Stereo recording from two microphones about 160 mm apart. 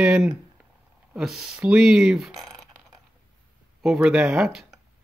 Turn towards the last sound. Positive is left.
turn(degrees=0)  # may be behind; listen again after turning